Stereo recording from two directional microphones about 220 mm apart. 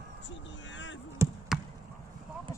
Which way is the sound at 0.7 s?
55° left (ahead or behind).